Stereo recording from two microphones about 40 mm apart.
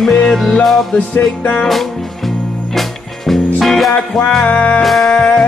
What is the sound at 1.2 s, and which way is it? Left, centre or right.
Music, left.